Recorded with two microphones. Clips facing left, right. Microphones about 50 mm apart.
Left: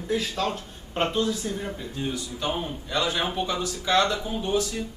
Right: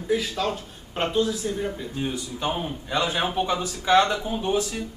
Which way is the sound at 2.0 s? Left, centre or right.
Right.